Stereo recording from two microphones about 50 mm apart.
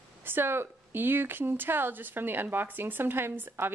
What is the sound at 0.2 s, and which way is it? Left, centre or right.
Speech, right.